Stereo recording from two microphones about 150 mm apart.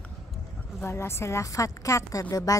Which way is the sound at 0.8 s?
15° left (ahead or behind).